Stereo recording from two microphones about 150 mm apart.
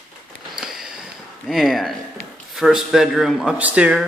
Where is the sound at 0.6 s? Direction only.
5° right (ahead or behind).